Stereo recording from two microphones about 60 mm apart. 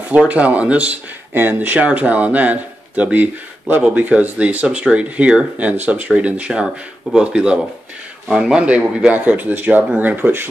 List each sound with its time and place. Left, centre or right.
0.1 s speech: right